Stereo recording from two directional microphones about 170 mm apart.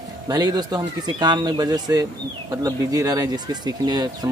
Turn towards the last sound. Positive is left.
turn(degrees=-25)  # may be behind; listen again after turning